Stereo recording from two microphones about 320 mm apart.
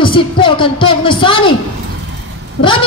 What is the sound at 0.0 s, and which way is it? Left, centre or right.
Speech, centre.